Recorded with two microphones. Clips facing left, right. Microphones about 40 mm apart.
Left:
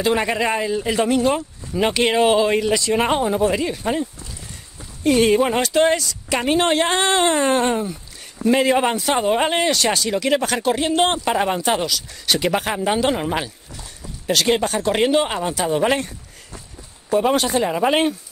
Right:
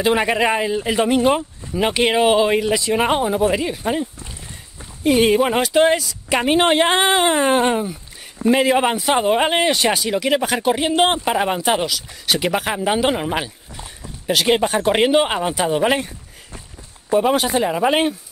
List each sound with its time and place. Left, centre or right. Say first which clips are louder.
0.0 s speech: right 2 dB; centre
1.7 s speech: right 1 dB; centre